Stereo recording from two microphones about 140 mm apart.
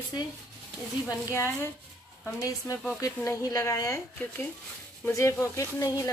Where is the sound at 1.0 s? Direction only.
20° left (ahead or behind).